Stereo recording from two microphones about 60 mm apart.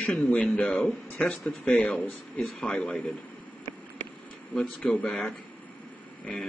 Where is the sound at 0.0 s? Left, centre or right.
Left.